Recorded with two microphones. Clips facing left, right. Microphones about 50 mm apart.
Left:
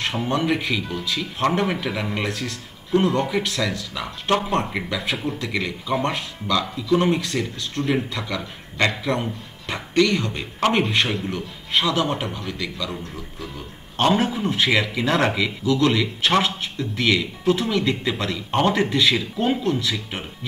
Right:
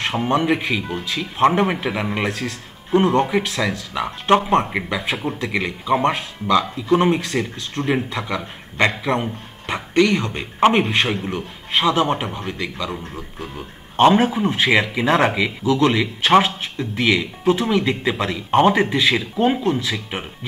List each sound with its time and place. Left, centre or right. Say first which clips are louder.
0.4 s speech: right 2 dB; right